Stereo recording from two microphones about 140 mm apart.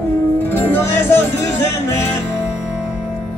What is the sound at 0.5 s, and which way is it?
Music, 20° left (ahead or behind).